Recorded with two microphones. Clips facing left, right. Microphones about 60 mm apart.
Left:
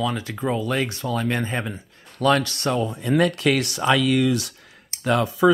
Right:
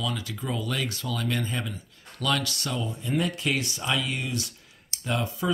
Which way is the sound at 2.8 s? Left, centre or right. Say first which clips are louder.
Left 7 dB; left.